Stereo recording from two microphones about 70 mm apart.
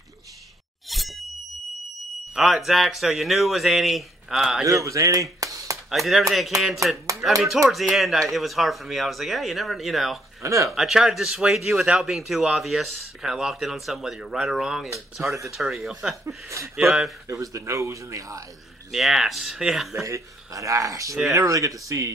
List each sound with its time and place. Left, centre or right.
0.8 s a sound: centre
2.3 s speech: centre
4.6 s speech: right
5.9 s speech: centre
10.4 s speech: right
10.7 s speech: centre
16.3 s speech: right
18.9 s speech: centre
19.9 s speech: right